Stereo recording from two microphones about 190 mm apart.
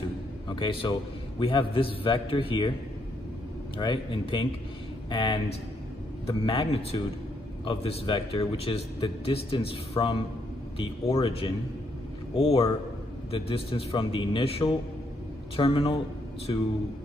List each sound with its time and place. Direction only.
0.5 s a man's voice: 25° left (ahead or behind)
3.7 s a man's voice: 25° left (ahead or behind)